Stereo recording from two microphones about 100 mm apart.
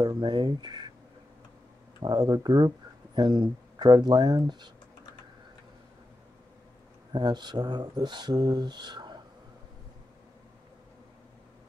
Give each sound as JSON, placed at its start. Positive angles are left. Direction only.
{"t": 0.0, "sound": "speech", "side_deg": -45}
{"t": 2.0, "sound": "speech", "side_deg": -45}
{"t": 7.1, "sound": "speech", "side_deg": -50}